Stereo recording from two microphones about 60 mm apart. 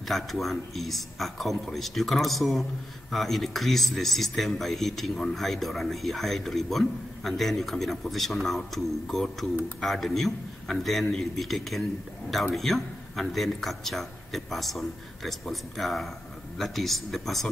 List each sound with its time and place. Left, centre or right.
0.1 s speech: centre